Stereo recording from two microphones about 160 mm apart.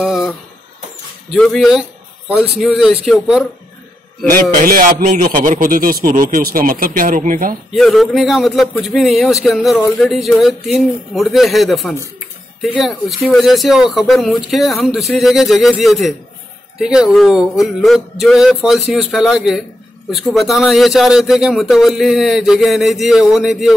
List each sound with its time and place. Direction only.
1.3 s speech: centre (ahead or behind)
4.3 s a man's voice: 65° right (ahead or behind)
7.7 s speech: centre (ahead or behind)